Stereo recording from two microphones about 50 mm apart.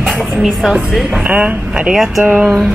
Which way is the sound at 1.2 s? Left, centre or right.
Right.